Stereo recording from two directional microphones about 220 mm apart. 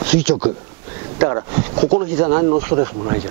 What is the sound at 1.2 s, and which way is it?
Speech, 20° right (ahead or behind).